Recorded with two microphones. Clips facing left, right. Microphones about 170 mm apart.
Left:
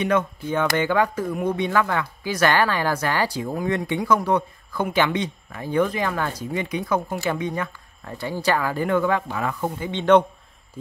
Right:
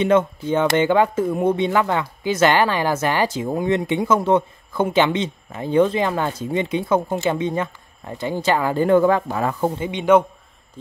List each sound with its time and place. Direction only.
0.0 s speech: 25° right (ahead or behind)
9.8 s a man's voice: 10° right (ahead or behind)